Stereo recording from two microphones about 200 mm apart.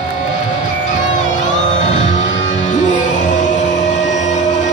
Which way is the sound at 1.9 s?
40° left (ahead or behind).